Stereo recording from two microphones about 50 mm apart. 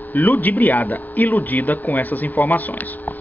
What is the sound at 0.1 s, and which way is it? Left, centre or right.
Speech, left.